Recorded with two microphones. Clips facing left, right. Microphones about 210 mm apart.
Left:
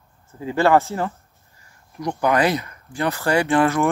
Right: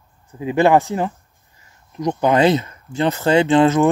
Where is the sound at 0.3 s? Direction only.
15° right (ahead or behind).